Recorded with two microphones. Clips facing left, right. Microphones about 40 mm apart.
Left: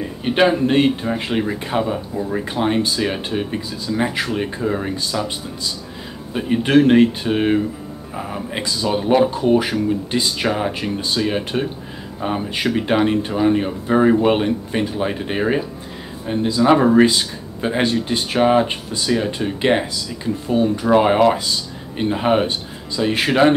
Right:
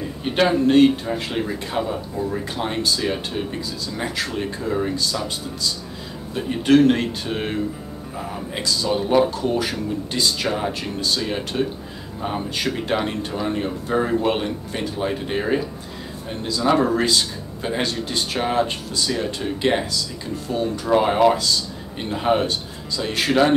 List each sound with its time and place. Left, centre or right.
0.2 s speech: centre